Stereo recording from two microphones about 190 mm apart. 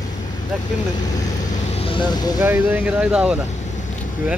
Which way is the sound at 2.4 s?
10° right (ahead or behind).